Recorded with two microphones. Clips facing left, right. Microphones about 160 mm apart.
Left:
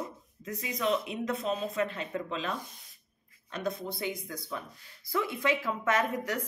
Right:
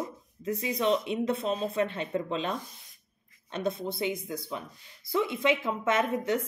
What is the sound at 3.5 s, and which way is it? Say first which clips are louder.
Speech: right 3 dB; 25° right (ahead or behind).